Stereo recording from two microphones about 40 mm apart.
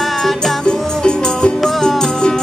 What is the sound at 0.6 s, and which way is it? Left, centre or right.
Music, left.